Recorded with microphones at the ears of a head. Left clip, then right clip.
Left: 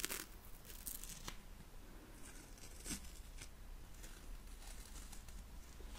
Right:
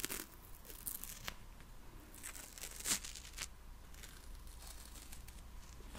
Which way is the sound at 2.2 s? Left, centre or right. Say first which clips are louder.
Right 12 dB; right.